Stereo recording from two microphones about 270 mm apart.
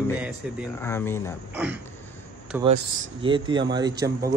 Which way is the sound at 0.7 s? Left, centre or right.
Centre.